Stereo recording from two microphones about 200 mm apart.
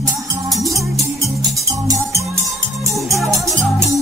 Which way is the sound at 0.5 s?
15° right (ahead or behind).